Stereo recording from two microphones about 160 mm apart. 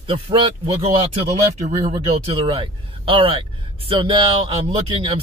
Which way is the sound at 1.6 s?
50° right (ahead or behind).